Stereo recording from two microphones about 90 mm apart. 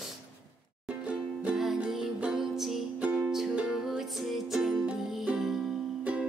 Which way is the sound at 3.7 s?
5° right (ahead or behind).